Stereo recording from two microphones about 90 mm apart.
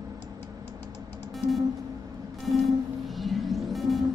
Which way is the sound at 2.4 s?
Centre (ahead or behind).